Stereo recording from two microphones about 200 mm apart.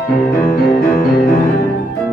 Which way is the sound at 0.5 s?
45° left (ahead or behind).